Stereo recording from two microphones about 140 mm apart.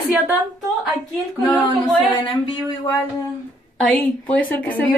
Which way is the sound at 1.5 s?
10° left (ahead or behind).